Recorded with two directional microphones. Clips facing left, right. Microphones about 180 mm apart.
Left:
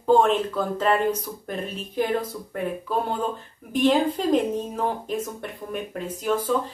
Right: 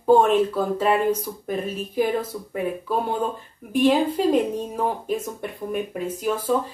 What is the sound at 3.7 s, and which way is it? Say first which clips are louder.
Speech: right 2 dB; 10° right (ahead or behind).